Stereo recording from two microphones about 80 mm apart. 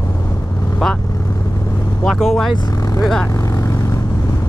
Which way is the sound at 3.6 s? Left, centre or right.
Left.